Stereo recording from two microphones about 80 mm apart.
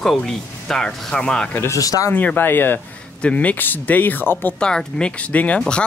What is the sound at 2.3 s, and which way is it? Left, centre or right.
Speech, left.